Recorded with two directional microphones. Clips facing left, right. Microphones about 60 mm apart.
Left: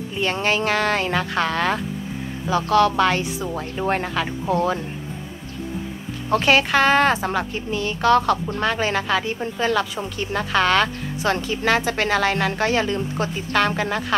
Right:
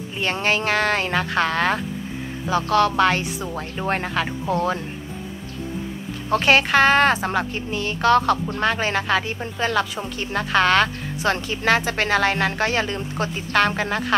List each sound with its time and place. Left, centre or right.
0.2 s speech: right
6.4 s speech: right